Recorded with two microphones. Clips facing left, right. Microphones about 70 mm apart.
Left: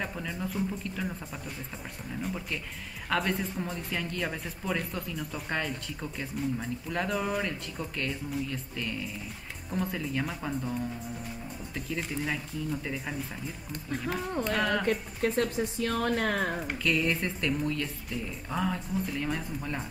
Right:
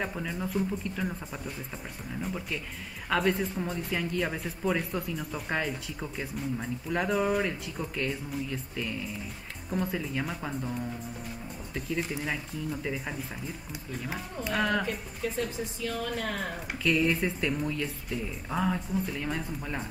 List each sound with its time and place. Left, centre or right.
0.0 s speech: centre
3.1 s speech: centre
14.4 s speech: centre
14.9 s speech: left
16.8 s speech: centre